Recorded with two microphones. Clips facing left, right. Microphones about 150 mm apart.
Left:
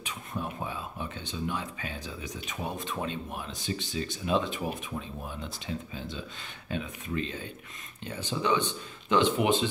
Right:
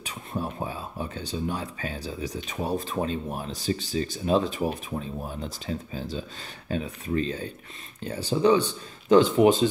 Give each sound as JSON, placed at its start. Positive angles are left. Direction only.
{"t": 0.0, "sound": "speech", "side_deg": -35}